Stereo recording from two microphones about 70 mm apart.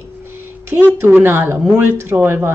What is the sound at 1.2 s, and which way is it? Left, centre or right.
Speech, right.